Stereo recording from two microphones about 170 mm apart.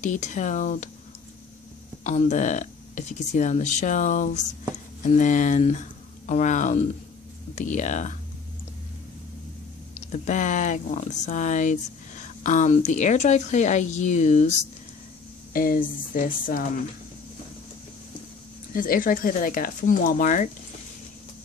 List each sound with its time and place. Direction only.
0.0 s speech: 45° left (ahead or behind)
2.0 s speech: 45° left (ahead or behind)
10.1 s speech: 45° left (ahead or behind)
15.5 s speech: 55° left (ahead or behind)
18.7 s speech: 55° left (ahead or behind)